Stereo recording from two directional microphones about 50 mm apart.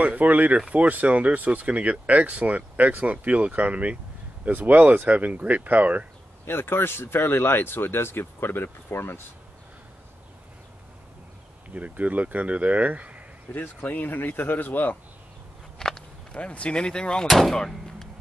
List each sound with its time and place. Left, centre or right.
0.0 s speech: right
6.4 s speech: left
11.7 s speech: right
13.7 s speech: left
15.8 s a sound: centre
16.3 s speech: left
17.3 s speech: centre